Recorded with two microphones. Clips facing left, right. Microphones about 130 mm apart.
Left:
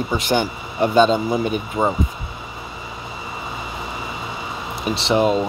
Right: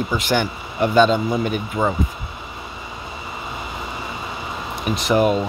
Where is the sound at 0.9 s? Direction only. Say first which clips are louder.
Even; 40° left (ahead or behind).